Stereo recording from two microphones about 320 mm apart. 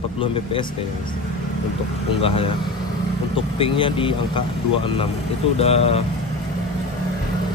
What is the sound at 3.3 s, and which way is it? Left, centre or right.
Speech, centre.